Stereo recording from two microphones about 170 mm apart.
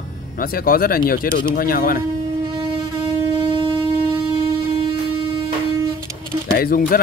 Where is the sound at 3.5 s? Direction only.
30° right (ahead or behind).